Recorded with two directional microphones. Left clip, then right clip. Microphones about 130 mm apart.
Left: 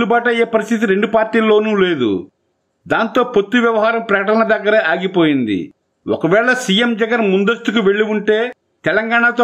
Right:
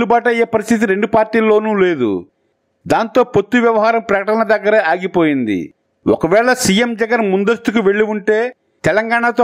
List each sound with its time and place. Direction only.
0.0 s a man's voice: 40° right (ahead or behind)
7.2 s a man's voice: 20° right (ahead or behind)
7.4 s a man's voice: 40° right (ahead or behind)